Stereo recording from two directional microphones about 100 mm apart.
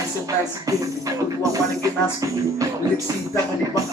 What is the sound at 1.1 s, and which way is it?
Music, 35° right (ahead or behind).